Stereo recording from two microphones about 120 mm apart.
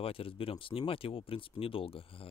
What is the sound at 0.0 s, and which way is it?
Speech, 50° left (ahead or behind).